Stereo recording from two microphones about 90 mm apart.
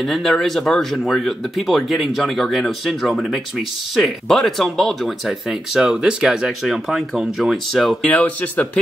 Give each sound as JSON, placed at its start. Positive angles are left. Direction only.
{"t": 0.0, "sound": "speech", "side_deg": 0}
{"t": 8.1, "sound": "speech", "side_deg": 15}